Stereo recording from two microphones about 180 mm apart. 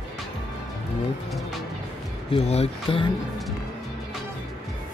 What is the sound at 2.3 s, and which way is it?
Speech, 35° left (ahead or behind).